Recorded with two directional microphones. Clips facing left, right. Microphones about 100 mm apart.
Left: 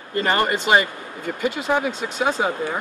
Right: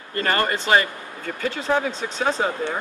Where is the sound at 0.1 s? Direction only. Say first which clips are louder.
Left 2 dB; 20° left (ahead or behind).